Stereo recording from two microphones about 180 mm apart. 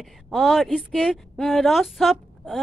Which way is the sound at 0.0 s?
Centre (ahead or behind).